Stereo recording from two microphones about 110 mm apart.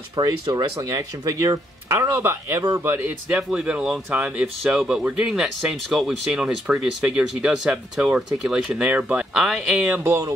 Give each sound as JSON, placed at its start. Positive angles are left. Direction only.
{"t": 0.1, "sound": "speech", "side_deg": -35}
{"t": 10.0, "sound": "speech", "side_deg": -30}